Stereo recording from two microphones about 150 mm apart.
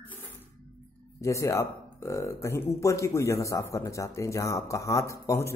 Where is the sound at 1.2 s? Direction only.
20° left (ahead or behind).